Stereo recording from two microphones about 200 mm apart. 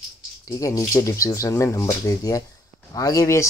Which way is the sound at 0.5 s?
15° left (ahead or behind).